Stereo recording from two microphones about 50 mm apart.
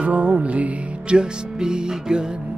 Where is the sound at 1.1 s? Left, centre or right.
Centre.